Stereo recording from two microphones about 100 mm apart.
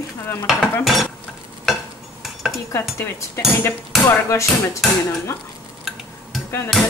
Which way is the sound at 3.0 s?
25° left (ahead or behind).